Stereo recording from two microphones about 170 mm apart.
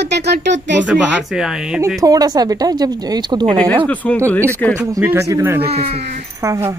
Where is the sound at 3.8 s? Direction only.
10° left (ahead or behind).